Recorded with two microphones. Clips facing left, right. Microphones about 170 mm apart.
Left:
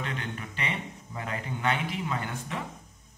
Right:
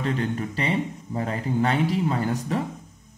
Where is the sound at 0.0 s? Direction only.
35° right (ahead or behind).